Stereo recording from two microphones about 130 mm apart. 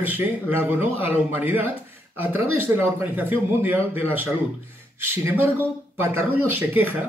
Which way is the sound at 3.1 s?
15° right (ahead or behind).